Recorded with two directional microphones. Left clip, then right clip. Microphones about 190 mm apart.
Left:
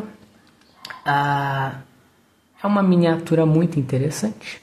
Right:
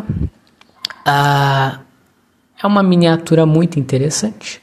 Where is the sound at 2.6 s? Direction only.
20° right (ahead or behind).